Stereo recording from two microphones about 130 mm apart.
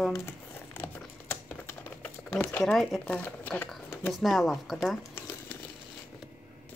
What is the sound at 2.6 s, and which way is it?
Speech, centre (ahead or behind).